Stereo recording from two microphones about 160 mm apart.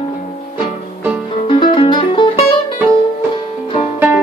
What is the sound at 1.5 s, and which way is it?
Music, 30° left (ahead or behind).